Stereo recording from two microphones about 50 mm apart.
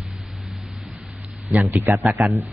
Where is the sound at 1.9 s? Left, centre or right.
Right.